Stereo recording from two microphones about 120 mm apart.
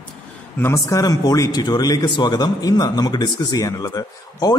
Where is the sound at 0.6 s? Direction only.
25° left (ahead or behind).